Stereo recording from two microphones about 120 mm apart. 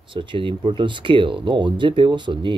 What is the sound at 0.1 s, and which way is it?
Speech, 45° right (ahead or behind).